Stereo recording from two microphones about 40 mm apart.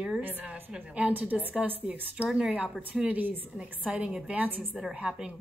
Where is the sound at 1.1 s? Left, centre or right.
Right.